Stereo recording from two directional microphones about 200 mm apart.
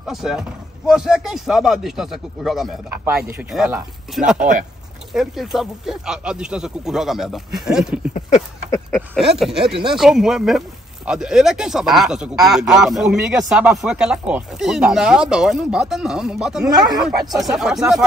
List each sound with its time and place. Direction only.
0.0 s speech: centre (ahead or behind)
16.6 s speech: 20° right (ahead or behind)
17.0 s speech: centre (ahead or behind)